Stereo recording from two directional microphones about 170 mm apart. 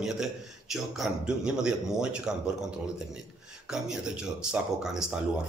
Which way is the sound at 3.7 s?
5° right (ahead or behind).